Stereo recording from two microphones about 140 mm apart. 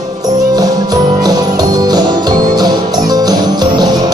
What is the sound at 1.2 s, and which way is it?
Music, 30° right (ahead or behind).